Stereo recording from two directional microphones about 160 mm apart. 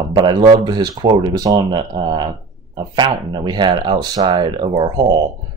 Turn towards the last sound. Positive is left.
turn(degrees=-25)  # may be behind; listen again after turning